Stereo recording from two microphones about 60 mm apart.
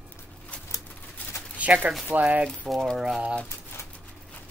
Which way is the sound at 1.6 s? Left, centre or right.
Right.